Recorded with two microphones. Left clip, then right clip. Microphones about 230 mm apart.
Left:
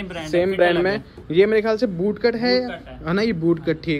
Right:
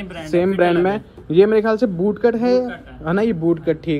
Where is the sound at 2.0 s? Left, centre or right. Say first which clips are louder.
Right 3 dB; right.